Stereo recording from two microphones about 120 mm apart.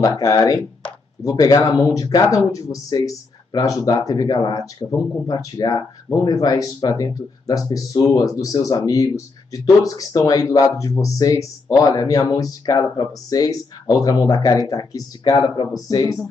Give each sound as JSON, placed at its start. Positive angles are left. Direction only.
{"t": 0.0, "sound": "speech", "side_deg": 30}